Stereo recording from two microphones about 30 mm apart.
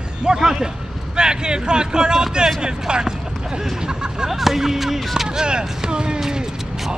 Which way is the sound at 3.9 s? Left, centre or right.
Right.